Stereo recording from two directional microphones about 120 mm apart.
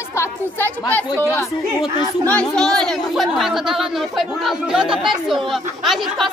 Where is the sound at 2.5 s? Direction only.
5° left (ahead or behind).